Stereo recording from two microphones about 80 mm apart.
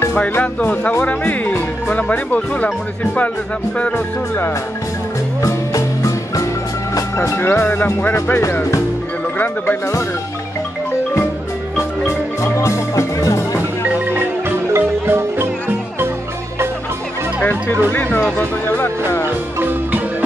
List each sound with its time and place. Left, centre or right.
0.4 s speech: centre
5.4 s music: left
7.2 s speech: left
12.5 s music: left
13.6 s music: right
14.8 s marimba: right
17.4 s speech: left